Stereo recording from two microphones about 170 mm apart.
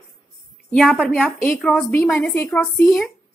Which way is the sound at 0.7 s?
Centre (ahead or behind).